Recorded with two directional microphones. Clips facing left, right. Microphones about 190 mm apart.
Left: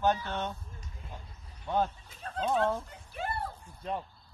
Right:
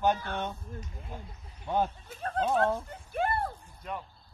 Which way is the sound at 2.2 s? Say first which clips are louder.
Right 6 dB; 55° right (ahead or behind).